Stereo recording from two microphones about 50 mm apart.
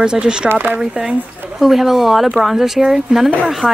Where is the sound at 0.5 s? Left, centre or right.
Right.